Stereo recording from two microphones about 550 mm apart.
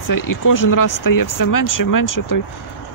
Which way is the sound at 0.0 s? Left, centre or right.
Left.